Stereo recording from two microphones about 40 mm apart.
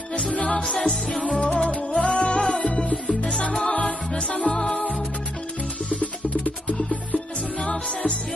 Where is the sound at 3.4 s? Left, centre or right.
Left.